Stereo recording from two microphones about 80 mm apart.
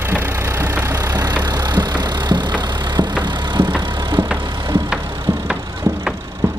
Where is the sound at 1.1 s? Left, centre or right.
Right.